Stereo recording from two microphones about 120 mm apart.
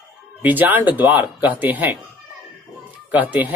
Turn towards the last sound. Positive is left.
turn(degrees=-15)  # may be behind; listen again after turning